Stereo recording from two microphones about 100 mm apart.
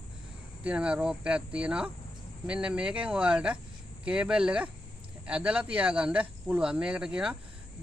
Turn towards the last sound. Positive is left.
turn(degrees=-10)  # may be behind; listen again after turning